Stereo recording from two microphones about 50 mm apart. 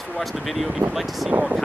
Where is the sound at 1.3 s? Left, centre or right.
Right.